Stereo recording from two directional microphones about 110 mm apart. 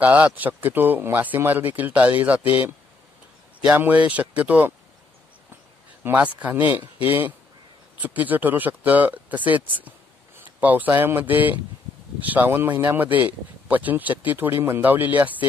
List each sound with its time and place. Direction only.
0.0 s speech: 15° right (ahead or behind)
3.6 s speech: 15° right (ahead or behind)
6.0 s speech: 15° right (ahead or behind)